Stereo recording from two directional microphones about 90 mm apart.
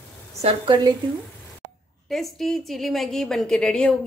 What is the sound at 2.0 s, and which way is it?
A woman's voice, 5° left (ahead or behind).